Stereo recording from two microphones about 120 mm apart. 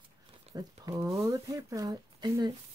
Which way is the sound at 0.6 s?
30° right (ahead or behind).